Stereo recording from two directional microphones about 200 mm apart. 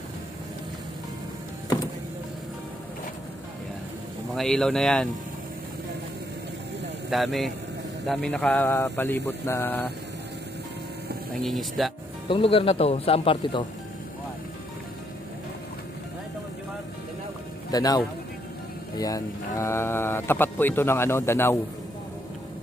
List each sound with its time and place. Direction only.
4.4 s speech: 5° left (ahead or behind)
7.1 s speech: centre (ahead or behind)
11.4 s speech: centre (ahead or behind)
12.3 s speech: 25° left (ahead or behind)
17.6 s a man's voice: 20° left (ahead or behind)